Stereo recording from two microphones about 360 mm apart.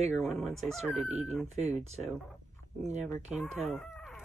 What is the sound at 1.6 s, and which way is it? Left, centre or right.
Speech, centre.